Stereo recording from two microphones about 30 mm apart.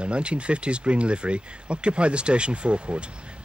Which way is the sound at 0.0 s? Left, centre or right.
Right.